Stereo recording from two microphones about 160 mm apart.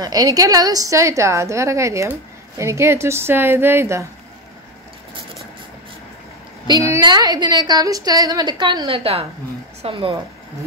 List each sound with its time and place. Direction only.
0.0 s a woman's voice: 25° right (ahead or behind)
6.7 s a woman's voice: 20° right (ahead or behind)